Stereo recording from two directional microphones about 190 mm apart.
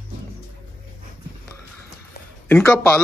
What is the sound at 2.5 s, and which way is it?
Speech, 10° left (ahead or behind).